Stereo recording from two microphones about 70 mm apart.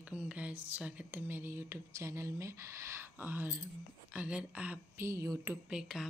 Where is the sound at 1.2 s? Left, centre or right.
Right.